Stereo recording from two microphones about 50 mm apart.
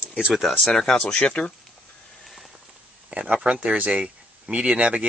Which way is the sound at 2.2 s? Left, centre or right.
Centre.